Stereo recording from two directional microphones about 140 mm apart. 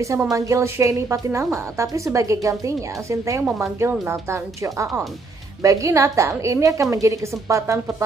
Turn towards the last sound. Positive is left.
turn(degrees=-20)  # may be behind; listen again after turning